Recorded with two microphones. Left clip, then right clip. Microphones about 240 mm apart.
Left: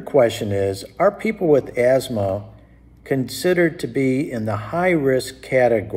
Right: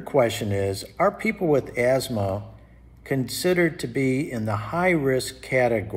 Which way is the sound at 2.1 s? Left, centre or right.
Right.